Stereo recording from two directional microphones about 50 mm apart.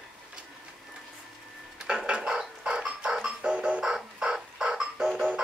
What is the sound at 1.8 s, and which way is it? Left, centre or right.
Music, centre.